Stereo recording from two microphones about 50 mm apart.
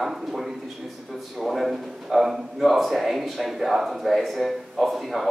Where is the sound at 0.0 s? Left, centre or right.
Centre.